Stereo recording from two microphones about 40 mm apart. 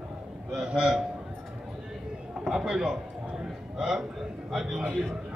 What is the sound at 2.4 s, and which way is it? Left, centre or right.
A woman's voice, centre.